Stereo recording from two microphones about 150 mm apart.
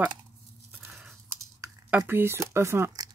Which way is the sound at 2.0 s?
15° right (ahead or behind).